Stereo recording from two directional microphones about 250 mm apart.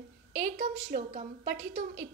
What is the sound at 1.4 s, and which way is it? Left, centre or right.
Speech, right.